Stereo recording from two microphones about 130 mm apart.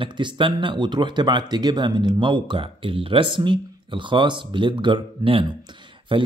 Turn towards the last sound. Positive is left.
turn(degrees=-40)  # may be behind; listen again after turning